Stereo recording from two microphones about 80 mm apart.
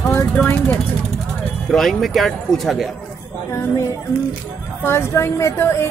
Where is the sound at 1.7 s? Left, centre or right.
Centre.